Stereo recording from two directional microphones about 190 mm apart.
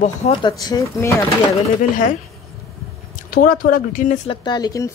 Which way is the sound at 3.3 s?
50° left (ahead or behind).